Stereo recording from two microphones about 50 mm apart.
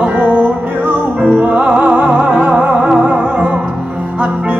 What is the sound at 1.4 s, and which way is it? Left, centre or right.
Music, right.